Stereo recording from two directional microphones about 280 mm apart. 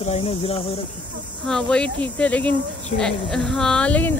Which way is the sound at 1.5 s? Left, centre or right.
Centre.